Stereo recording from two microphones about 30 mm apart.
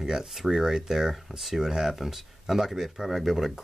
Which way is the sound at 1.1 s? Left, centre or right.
Centre.